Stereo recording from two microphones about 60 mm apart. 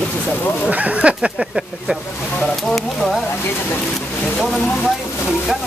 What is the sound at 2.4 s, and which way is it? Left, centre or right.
Speech, centre.